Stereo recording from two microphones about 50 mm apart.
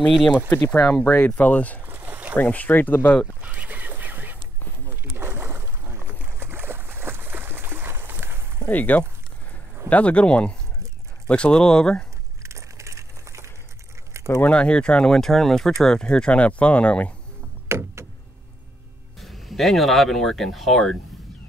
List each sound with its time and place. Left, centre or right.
0.7 s speech: left
1.9 s boat: right
2.3 s speech: left
3.3 s a sound: right
4.8 s boat: right
8.6 s speech: left; by 12.1 s centre
12.4 s a sound: right
14.2 s keys jangling: right
14.5 s speech: left
15.1 s speech: centre; by 17.1 s left
17.6 s a sound: right
19.2 s speech: centre